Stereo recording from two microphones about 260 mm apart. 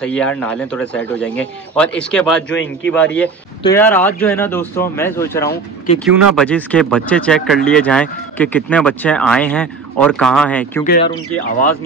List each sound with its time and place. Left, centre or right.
0.0 s speech: centre
2.5 s a man's voice: left
2.9 s speech: centre
10.8 s speech: left